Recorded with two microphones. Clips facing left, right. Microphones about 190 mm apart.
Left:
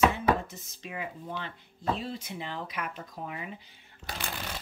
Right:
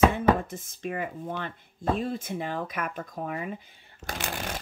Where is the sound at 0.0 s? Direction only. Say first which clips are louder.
Right 4 dB; 50° right (ahead or behind).